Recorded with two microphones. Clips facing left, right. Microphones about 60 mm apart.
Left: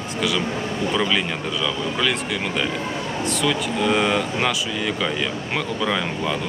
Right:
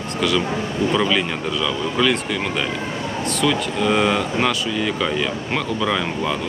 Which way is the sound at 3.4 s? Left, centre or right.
Centre.